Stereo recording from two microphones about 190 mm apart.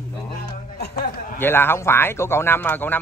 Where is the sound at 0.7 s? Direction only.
55° left (ahead or behind).